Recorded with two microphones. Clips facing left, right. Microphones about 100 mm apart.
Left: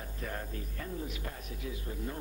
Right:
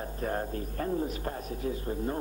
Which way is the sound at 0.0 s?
40° right (ahead or behind).